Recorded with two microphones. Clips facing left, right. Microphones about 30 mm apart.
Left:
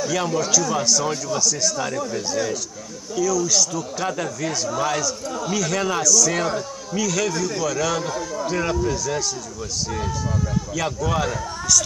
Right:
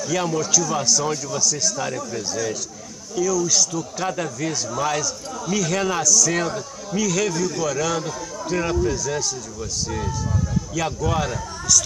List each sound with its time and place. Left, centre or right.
0.1 s speech: centre
3.2 s speech: centre
10.7 s speech: centre